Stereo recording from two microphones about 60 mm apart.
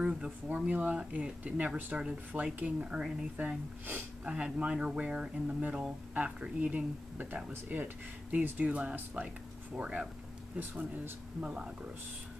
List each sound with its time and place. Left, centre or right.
0.0 s speech: centre
4.2 s speech: centre
10.6 s speech: right